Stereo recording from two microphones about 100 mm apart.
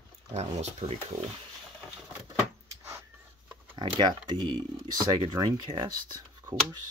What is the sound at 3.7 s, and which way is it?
Speech, 45° right (ahead or behind).